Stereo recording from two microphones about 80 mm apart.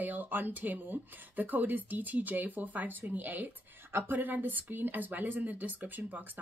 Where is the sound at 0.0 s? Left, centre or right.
Right.